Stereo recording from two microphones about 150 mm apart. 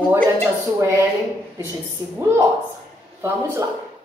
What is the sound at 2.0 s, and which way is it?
Speech, 25° right (ahead or behind).